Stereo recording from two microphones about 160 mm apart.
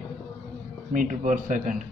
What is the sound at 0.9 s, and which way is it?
Speech, 55° right (ahead or behind).